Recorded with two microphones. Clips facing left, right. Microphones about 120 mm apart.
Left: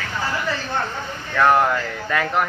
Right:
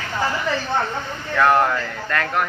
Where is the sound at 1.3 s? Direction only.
Centre (ahead or behind).